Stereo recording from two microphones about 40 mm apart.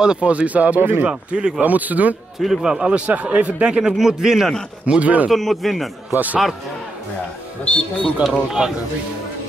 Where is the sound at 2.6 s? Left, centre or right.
Centre.